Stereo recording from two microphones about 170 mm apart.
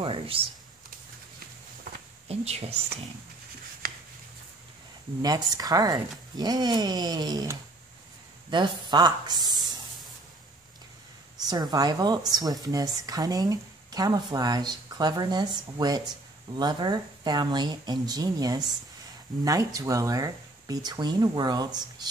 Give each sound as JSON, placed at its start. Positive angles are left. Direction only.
{"t": 0.0, "sound": "speech", "side_deg": -30}
{"t": 2.2, "sound": "speech", "side_deg": -40}
{"t": 5.2, "sound": "speech", "side_deg": -20}
{"t": 9.5, "sound": "a sound", "side_deg": -25}
{"t": 11.4, "sound": "speech", "side_deg": -25}